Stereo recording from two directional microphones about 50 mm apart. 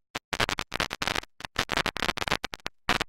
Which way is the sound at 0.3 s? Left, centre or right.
Centre.